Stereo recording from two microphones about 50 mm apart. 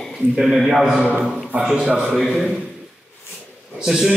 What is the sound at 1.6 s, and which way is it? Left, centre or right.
Speech, centre.